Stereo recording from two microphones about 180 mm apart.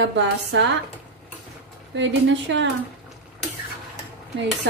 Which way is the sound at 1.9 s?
90° right.